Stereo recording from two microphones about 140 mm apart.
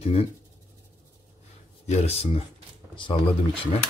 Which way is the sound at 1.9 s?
50° left (ahead or behind).